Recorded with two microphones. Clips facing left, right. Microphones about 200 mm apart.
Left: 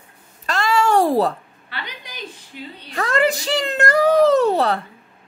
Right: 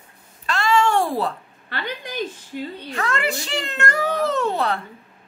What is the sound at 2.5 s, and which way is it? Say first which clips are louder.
Speech: right 7 dB; 50° right (ahead or behind).